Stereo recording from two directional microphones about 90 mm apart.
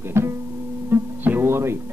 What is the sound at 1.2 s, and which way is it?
Music, 25° right (ahead or behind).